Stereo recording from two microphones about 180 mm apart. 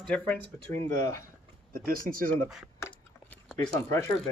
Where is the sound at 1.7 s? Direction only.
55° right (ahead or behind).